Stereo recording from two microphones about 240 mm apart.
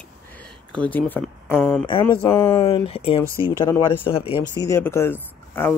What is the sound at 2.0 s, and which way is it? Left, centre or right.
Speech, centre.